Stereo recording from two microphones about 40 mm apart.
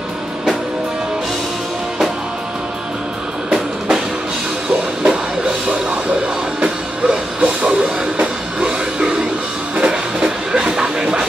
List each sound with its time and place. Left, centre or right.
5.0 s music: right